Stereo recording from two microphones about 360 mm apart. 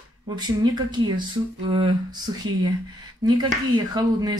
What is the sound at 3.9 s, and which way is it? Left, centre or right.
Speech, centre.